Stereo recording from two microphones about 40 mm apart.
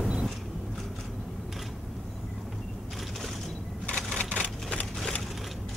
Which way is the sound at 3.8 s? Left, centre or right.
Left.